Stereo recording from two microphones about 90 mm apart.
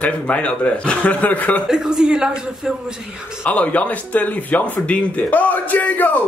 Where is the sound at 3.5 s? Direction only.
15° left (ahead or behind).